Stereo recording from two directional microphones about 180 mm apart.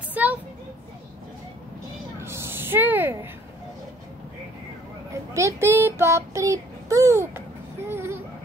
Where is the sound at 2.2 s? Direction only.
15° right (ahead or behind).